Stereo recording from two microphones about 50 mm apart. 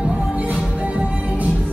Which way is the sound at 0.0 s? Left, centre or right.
Right.